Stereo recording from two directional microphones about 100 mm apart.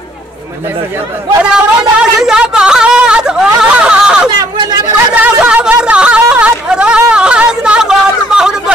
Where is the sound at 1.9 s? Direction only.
5° right (ahead or behind).